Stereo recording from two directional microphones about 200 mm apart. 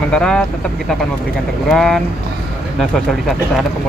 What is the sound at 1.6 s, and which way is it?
Speech, centre (ahead or behind).